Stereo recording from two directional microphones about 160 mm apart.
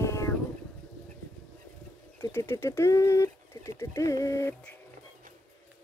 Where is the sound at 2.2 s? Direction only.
15° left (ahead or behind).